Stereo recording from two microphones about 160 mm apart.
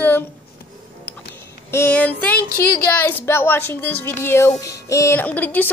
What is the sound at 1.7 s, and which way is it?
A woman's voice, 10° left (ahead or behind).